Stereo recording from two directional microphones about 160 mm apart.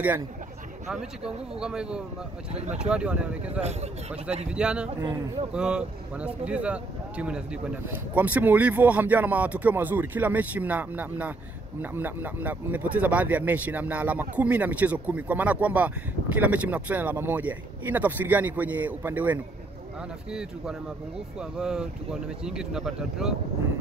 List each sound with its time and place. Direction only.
0.8 s speech: 5° right (ahead or behind)
2.5 s speech: 45° right (ahead or behind)
2.9 s speech: 5° right (ahead or behind)